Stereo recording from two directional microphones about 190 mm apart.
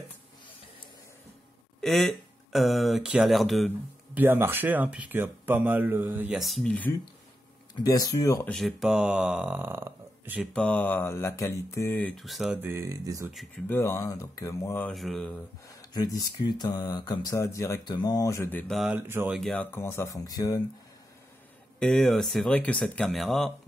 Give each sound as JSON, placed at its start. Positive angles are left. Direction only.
{"t": 1.8, "sound": "speech", "side_deg": 0}
{"t": 4.2, "sound": "speech", "side_deg": -10}
{"t": 7.8, "sound": "speech", "side_deg": 20}
{"t": 8.5, "sound": "speech", "side_deg": 0}
{"t": 10.5, "sound": "speech", "side_deg": 5}
{"t": 12.6, "sound": "speech", "side_deg": -15}
{"t": 13.7, "sound": "speech", "side_deg": 15}
{"t": 15.9, "sound": "speech", "side_deg": 20}
{"t": 21.7, "sound": "speech", "side_deg": 5}